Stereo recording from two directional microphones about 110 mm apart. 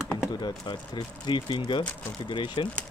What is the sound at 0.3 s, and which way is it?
Speech, 40° left (ahead or behind).